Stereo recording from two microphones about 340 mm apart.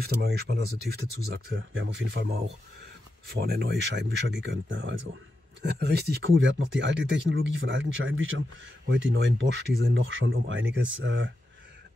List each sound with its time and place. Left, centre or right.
0.0 s speech: right
3.3 s speech: right